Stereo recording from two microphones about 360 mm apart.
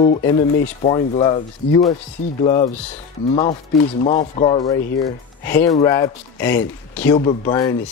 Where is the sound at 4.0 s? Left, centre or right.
Centre.